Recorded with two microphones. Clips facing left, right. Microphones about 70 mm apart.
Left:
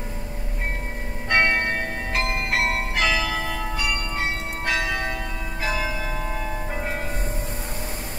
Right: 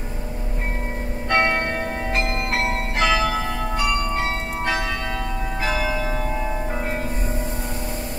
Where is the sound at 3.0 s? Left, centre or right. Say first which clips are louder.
Right 5 dB; right.